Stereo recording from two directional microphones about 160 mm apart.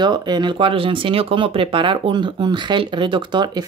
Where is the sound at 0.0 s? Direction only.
25° right (ahead or behind).